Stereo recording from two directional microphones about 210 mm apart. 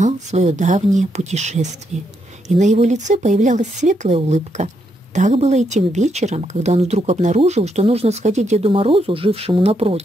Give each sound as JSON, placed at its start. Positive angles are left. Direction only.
{"t": 0.0, "sound": "speech", "side_deg": -35}